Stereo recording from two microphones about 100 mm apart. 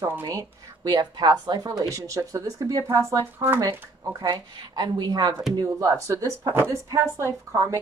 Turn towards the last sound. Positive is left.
turn(degrees=-30)  # may be behind; listen again after turning